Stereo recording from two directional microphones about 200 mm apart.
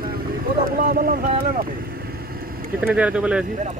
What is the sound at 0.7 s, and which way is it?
Speech, 45° right (ahead or behind).